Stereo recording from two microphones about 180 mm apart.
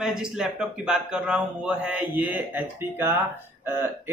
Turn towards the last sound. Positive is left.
turn(degrees=-15)  # may be behind; listen again after turning